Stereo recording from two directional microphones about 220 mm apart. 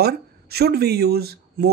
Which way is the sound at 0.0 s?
45° right (ahead or behind).